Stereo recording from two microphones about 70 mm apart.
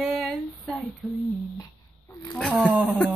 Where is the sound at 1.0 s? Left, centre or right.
Centre.